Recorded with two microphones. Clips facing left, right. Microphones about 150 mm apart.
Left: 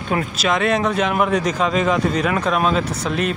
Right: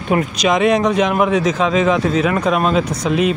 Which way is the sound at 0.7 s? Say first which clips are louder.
Right 4 dB; centre (ahead or behind).